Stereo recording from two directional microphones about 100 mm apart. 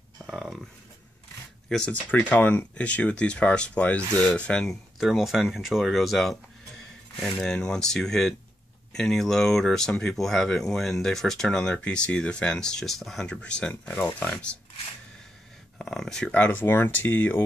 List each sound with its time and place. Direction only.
0.3 s a sound: centre (ahead or behind)
1.7 s speech: 10° left (ahead or behind)
4.9 s speech: centre (ahead or behind)
15.8 s speech: 5° left (ahead or behind)